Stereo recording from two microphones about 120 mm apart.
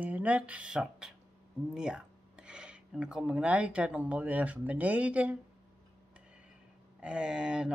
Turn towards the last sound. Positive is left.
turn(degrees=-10)  # may be behind; listen again after turning